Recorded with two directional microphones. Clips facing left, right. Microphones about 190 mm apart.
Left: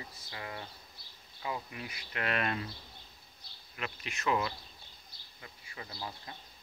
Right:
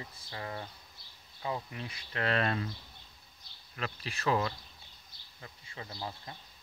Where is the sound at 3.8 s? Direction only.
35° right (ahead or behind).